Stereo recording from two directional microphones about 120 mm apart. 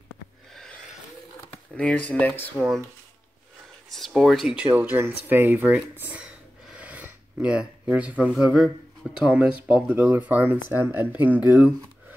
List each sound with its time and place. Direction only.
1.5 s speech: 10° left (ahead or behind)
3.9 s speech: centre (ahead or behind)
4.7 s speech: 15° right (ahead or behind)
6.7 s a sound: 10° right (ahead or behind)
9.1 s speech: 5° right (ahead or behind)